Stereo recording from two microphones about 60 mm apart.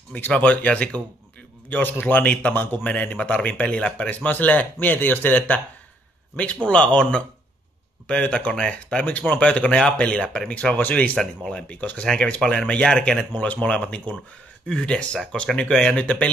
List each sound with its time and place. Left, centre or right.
0.3 s speech: left
1.7 s speech: left
8.5 s speech: centre
9.0 s speech: left
11.1 s speech: centre
11.6 s speech: left
12.0 s speech: centre
15.7 s speech: centre
16.0 s speech: left